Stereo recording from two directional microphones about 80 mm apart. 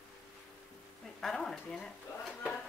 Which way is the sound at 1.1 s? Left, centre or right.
Centre.